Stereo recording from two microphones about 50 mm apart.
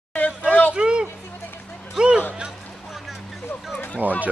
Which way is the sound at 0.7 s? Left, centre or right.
Centre.